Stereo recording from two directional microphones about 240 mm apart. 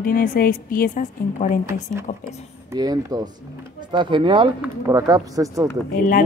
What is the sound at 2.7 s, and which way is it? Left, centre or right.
Speech, centre.